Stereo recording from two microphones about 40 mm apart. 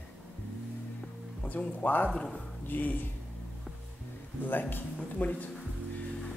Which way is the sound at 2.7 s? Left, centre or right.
Left.